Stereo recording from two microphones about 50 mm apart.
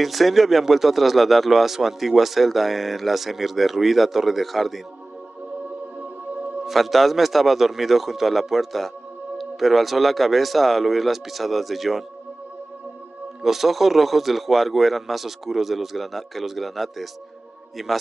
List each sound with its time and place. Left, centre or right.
0.0 s speech: centre
6.6 s speech: centre
13.4 s speech: centre